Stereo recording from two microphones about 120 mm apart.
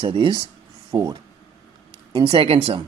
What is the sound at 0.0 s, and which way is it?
Speech, 40° right (ahead or behind).